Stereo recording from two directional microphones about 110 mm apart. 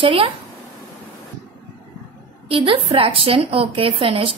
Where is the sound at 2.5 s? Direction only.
55° right (ahead or behind).